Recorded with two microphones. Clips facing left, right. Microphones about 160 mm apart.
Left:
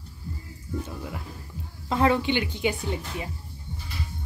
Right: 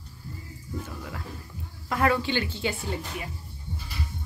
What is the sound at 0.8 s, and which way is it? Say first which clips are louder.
Speech: left 2 dB; 20° left (ahead or behind).